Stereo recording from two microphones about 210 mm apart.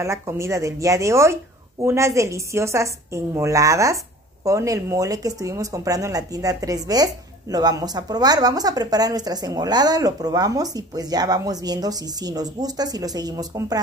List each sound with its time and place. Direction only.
0.0 s speech: 15° right (ahead or behind)